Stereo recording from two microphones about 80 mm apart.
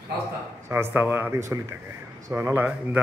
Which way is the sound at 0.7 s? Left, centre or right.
Right.